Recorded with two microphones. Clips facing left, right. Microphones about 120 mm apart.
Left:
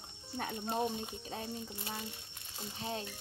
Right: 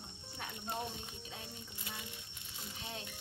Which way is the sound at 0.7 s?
25° left (ahead or behind).